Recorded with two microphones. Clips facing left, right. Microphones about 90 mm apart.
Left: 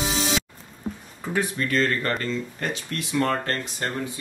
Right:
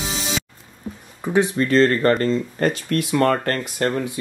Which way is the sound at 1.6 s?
35° right (ahead or behind).